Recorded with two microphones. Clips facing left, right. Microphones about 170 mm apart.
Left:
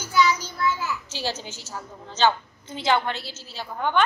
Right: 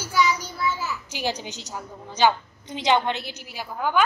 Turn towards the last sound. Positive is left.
turn(degrees=-5)  # may be behind; listen again after turning